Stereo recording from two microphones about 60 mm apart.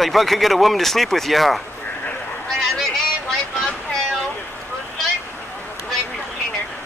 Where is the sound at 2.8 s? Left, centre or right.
Centre.